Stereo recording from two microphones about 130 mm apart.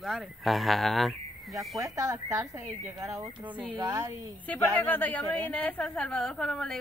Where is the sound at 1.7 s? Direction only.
25° right (ahead or behind).